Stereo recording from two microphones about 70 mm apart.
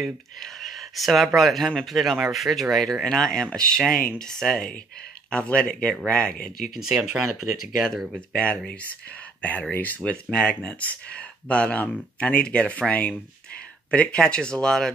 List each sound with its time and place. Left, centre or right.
0.4 s speech: centre
6.7 s speech: centre
8.4 s speech: centre